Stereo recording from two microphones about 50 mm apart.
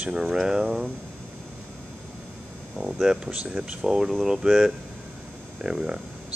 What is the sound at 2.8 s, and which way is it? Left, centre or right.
Speech, centre.